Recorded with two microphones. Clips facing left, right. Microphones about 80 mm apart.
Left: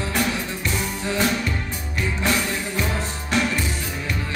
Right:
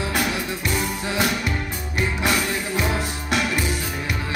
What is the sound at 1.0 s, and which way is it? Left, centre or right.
Music, centre.